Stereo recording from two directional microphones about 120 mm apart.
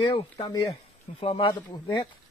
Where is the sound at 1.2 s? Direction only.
55° left (ahead or behind).